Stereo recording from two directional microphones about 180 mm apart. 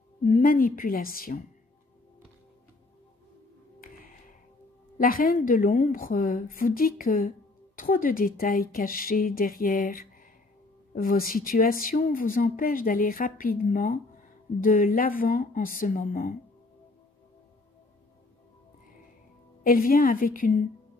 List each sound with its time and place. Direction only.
0.2 s a woman's voice: 45° left (ahead or behind)
4.9 s a woman's voice: 55° left (ahead or behind)
19.6 s a woman's voice: 50° left (ahead or behind)